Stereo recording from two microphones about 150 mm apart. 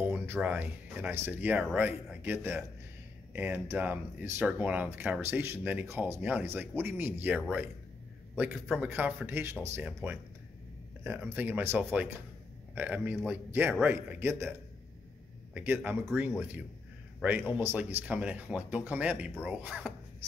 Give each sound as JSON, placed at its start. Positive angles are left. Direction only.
{"t": 0.0, "sound": "speech", "side_deg": -10}
{"t": 8.4, "sound": "a man's voice", "side_deg": 0}
{"t": 15.5, "sound": "a man's voice", "side_deg": -15}